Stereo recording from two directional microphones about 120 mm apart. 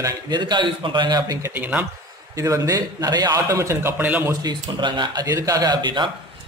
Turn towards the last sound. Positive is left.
turn(degrees=-40)  # may be behind; listen again after turning